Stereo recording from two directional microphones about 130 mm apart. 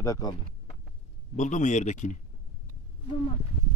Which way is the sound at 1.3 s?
65° left (ahead or behind).